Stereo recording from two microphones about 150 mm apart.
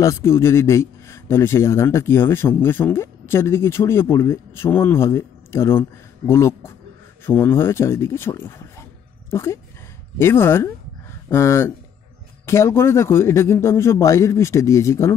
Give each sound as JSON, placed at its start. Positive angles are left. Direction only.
{"t": 0.0, "sound": "speech", "side_deg": 20}